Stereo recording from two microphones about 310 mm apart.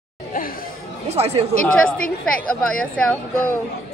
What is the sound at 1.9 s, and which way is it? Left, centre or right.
Speech, left.